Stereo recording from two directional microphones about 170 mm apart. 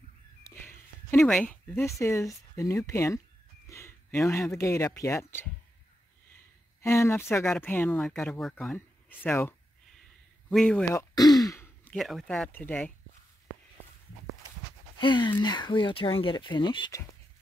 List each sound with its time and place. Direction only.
0.5 s speech: 15° left (ahead or behind)
6.8 s speech: 15° left (ahead or behind)
8.7 s speech: 10° left (ahead or behind)
11.0 s speech: 20° left (ahead or behind)
15.0 s speech: 25° left (ahead or behind)